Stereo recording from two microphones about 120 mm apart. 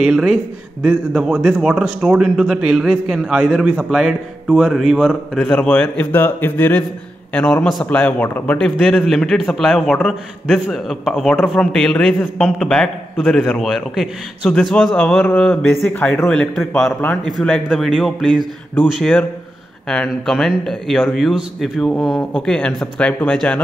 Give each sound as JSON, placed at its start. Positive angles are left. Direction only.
{"t": 0.0, "sound": "a man's voice", "side_deg": -5}
{"t": 5.4, "sound": "a man's voice", "side_deg": 10}
{"t": 7.8, "sound": "a man's voice", "side_deg": 10}